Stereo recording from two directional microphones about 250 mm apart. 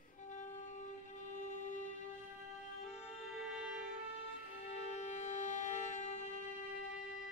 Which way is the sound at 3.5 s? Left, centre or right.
Centre.